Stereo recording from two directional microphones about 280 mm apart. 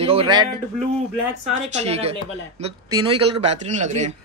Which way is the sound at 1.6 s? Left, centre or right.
Right.